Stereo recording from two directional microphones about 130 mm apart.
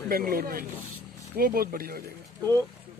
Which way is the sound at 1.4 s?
90° right.